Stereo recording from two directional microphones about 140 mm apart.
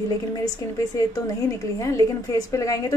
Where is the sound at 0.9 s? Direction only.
25° left (ahead or behind).